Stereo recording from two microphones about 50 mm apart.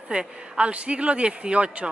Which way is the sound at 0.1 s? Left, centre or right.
Centre.